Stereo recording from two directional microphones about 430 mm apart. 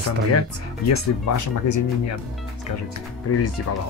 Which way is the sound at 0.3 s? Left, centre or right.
Left.